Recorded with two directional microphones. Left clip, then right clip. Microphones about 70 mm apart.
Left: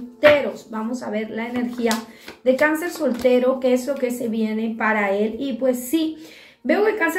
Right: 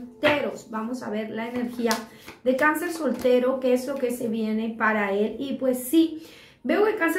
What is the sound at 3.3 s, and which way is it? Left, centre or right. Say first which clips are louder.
A woman's voice: left 3 dB; right.